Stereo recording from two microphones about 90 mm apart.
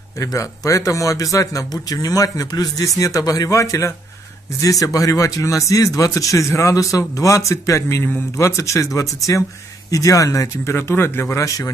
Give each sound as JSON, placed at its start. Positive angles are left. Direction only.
{"t": 0.2, "sound": "speech", "side_deg": 40}